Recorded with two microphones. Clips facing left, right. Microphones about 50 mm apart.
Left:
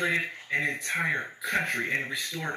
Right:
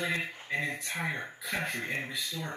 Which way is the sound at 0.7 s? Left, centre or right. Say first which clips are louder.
Left 6 dB; left.